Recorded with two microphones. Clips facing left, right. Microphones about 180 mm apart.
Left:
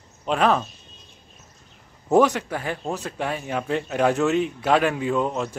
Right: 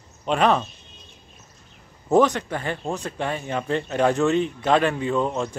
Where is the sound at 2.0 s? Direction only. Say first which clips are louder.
Even; 10° left (ahead or behind).